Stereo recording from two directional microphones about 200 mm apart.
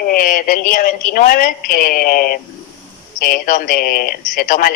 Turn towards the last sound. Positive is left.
turn(degrees=45)  # may be behind; listen again after turning